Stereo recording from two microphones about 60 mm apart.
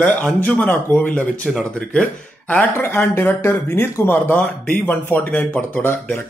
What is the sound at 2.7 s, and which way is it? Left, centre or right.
Speech, left.